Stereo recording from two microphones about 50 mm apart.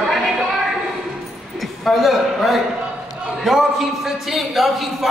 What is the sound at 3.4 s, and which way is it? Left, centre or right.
A man's voice, centre.